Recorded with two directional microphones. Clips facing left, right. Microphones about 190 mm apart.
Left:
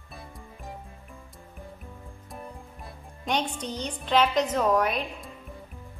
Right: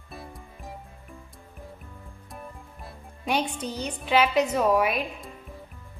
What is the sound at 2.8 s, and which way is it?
Speech, 10° right (ahead or behind).